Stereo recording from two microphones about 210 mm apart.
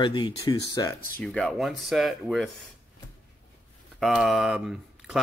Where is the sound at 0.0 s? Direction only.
20° left (ahead or behind).